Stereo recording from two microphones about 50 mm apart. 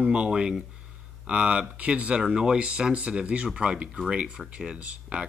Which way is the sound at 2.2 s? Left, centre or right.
Centre.